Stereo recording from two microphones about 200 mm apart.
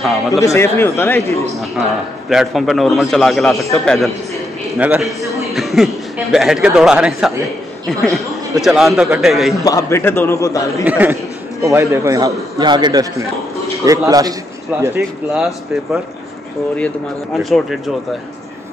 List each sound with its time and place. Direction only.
0.3 s speech: 15° left (ahead or behind)
2.2 s a man's voice: centre (ahead or behind)
9.6 s speech: 15° left (ahead or behind)
10.9 s a man's voice: 10° right (ahead or behind)
17.4 s a man's voice: centre (ahead or behind)